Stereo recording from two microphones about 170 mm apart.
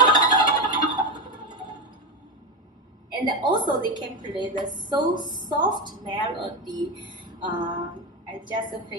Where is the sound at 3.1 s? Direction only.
25° right (ahead or behind).